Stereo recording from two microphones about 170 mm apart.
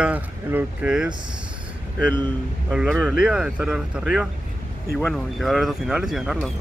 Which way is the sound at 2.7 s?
5° right (ahead or behind).